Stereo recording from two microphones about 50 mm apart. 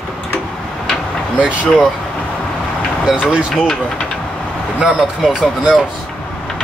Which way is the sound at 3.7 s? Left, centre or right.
Centre.